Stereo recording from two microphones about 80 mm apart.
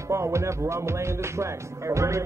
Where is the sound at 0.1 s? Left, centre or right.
Right.